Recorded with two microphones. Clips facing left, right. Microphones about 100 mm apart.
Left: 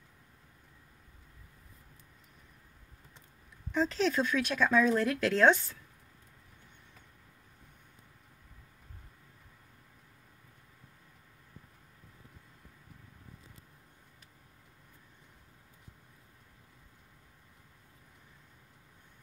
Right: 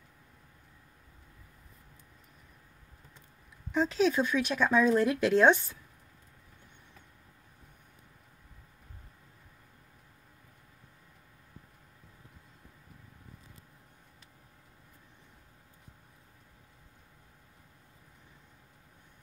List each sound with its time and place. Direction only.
3.7 s speech: 5° right (ahead or behind)